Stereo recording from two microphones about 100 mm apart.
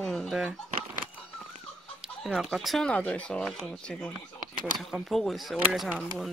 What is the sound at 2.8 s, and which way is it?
Speech, 15° left (ahead or behind).